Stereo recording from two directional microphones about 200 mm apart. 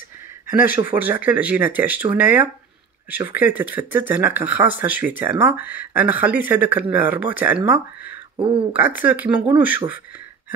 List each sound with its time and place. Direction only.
0.5 s speech: 10° right (ahead or behind)
8.4 s speech: 25° right (ahead or behind)
9.0 s speech: 10° right (ahead or behind)